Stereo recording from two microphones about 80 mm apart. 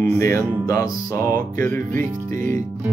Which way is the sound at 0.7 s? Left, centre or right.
Left.